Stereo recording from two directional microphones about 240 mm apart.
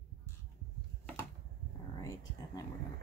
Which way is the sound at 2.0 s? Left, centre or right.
Centre.